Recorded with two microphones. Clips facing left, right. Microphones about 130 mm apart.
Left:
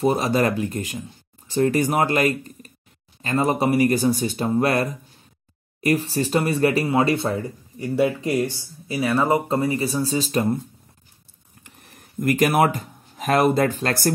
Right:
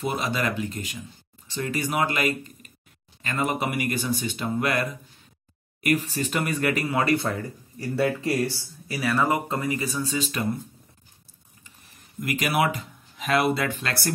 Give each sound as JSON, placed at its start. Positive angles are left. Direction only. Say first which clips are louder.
{"t": 0.0, "sound": "speech", "louder": "left 7 dB", "side_deg": 40}
{"t": 11.6, "sound": "speech", "louder": "left 6 dB", "side_deg": 60}